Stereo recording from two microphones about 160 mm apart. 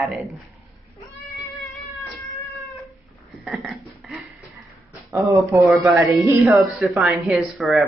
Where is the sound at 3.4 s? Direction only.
Centre (ahead or behind).